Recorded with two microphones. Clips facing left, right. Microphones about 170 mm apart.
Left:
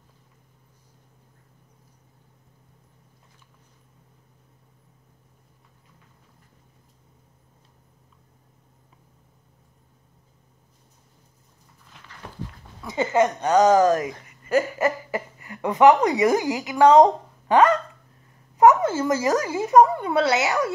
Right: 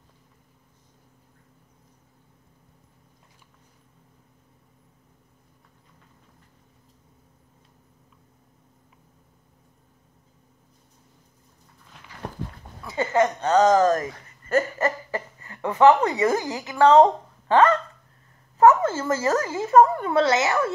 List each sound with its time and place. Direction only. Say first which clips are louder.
12.8 s a woman's voice: left 1 dB; 20° left (ahead or behind)